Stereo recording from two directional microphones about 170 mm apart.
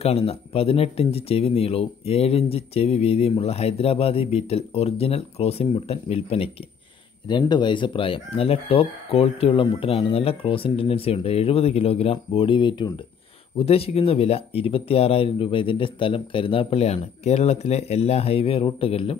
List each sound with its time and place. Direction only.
0.0 s speech: 35° left (ahead or behind)